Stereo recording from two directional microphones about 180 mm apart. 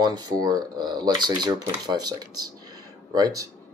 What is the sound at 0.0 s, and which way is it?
Speech, 20° right (ahead or behind).